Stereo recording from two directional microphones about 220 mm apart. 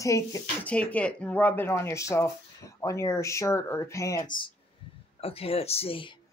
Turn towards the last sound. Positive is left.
turn(degrees=25)  # may be behind; listen again after turning